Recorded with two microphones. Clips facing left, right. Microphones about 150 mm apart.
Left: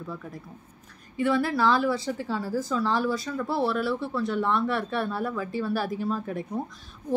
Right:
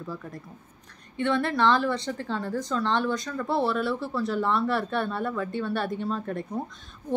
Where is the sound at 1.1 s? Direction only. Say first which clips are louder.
Left 1 dB; 5° left (ahead or behind).